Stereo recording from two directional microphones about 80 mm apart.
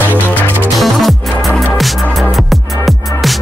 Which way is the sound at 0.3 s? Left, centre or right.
Left.